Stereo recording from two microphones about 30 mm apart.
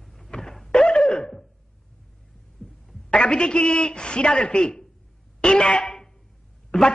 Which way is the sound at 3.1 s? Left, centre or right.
Left.